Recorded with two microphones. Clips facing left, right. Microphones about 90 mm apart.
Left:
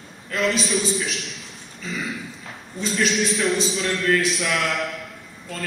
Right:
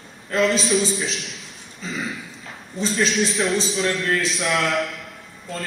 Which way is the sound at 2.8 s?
35° right (ahead or behind).